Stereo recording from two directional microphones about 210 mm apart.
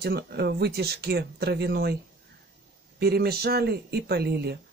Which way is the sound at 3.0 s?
50° right (ahead or behind).